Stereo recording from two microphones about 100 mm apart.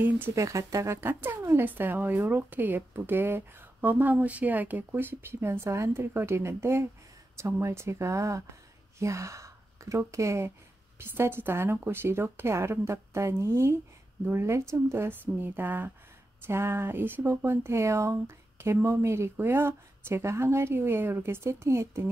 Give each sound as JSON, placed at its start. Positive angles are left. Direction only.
{"t": 0.3, "sound": "speech", "side_deg": -30}